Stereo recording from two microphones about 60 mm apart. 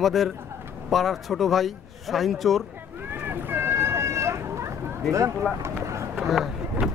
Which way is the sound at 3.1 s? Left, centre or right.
Right.